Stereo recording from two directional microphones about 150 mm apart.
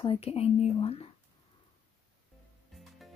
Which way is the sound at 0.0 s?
40° left (ahead or behind).